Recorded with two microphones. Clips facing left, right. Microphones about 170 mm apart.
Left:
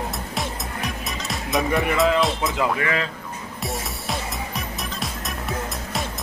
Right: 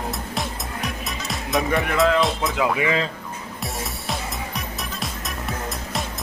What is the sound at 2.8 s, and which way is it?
Speech, 20° right (ahead or behind).